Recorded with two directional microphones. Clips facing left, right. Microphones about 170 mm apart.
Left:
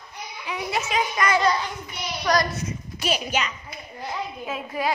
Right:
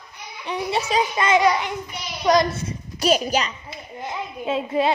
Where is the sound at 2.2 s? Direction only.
25° right (ahead or behind).